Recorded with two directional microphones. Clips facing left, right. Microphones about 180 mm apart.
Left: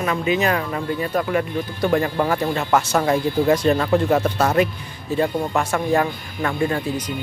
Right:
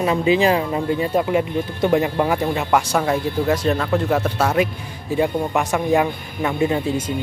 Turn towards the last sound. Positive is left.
turn(degrees=-25)  # may be behind; listen again after turning